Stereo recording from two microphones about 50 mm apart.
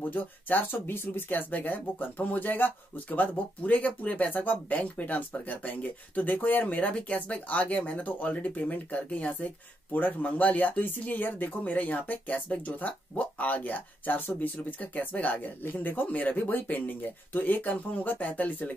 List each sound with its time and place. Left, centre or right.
0.1 s speech: left